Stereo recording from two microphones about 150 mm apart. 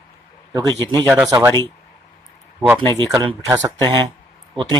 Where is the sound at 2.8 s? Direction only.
30° right (ahead or behind).